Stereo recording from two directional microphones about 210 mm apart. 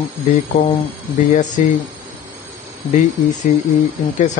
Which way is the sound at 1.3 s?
35° left (ahead or behind).